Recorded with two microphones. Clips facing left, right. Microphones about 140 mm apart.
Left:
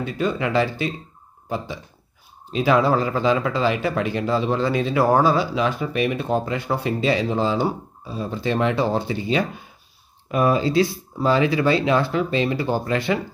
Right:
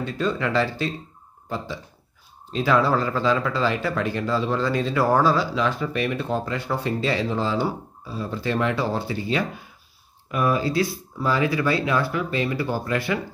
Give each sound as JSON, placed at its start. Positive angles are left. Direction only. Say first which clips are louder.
{"t": 0.0, "sound": "speech", "louder": "left 1 dB", "side_deg": 15}
{"t": 2.5, "sound": "speech", "louder": "left 2 dB", "side_deg": 15}